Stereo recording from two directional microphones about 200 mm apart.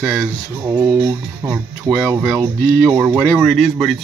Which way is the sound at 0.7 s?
20° right (ahead or behind).